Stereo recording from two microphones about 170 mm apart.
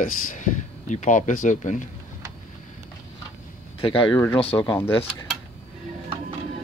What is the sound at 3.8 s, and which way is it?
Speech, 30° left (ahead or behind).